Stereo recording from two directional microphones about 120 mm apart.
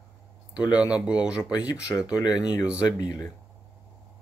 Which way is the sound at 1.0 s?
10° right (ahead or behind).